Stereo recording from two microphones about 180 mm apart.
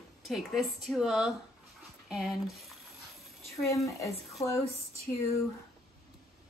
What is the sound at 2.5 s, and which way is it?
Speech, centre (ahead or behind).